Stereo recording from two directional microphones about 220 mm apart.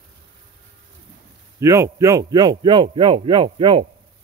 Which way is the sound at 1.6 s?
15° right (ahead or behind).